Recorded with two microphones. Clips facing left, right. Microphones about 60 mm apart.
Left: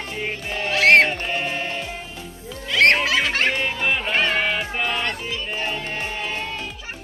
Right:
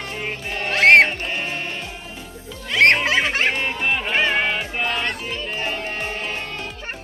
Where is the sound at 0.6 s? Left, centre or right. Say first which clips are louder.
Right 2 dB; right.